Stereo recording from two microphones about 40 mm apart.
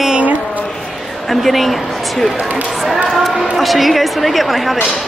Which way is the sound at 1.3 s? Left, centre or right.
Centre.